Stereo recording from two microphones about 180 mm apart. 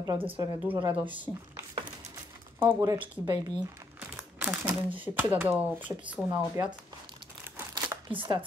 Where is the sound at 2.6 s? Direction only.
15° right (ahead or behind).